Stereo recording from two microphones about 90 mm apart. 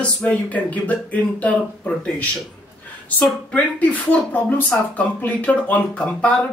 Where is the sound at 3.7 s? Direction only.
15° left (ahead or behind).